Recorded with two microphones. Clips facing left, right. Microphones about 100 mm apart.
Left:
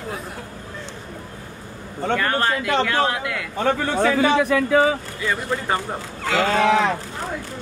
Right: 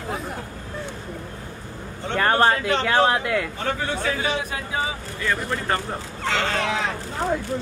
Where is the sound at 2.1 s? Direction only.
40° right (ahead or behind).